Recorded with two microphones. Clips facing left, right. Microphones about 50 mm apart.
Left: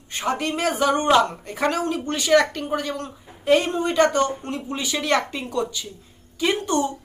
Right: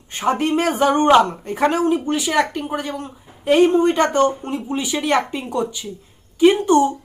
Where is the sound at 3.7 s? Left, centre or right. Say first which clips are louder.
Right 3 dB; right.